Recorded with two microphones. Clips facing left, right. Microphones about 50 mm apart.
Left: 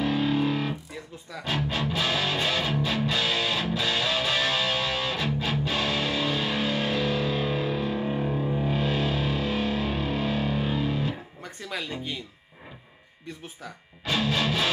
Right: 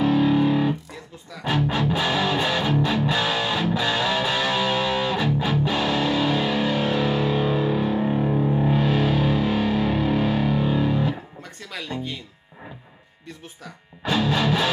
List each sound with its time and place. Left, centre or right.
0.0 s music: centre
0.3 s music: right
11.4 s music: centre
14.1 s music: right